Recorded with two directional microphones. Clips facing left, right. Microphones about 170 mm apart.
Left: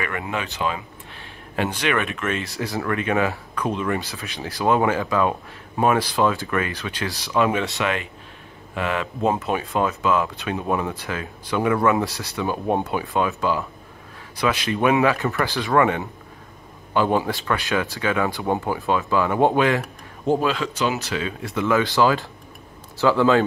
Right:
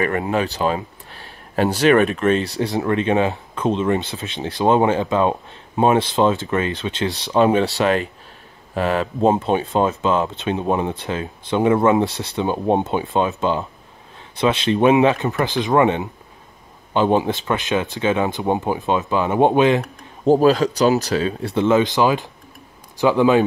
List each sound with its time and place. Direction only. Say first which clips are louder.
0.0 s speech: right 8 dB; 35° right (ahead or behind)
2.6 s speech: right 5 dB; 25° right (ahead or behind)
20.2 s a man's voice: right 7 dB; 40° right (ahead or behind); by 23.4 s 15° right (ahead or behind)